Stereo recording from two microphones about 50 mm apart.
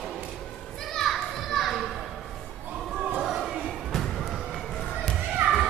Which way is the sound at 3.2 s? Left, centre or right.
Centre.